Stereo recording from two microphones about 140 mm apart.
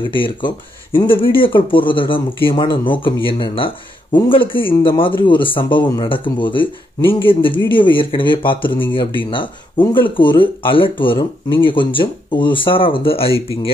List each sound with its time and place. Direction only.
0.0 s speech: 35° left (ahead or behind)